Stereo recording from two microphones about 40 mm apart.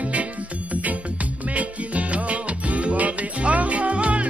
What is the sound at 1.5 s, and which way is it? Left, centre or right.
Music, right.